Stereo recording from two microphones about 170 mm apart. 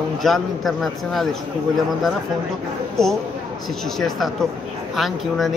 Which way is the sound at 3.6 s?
Centre (ahead or behind).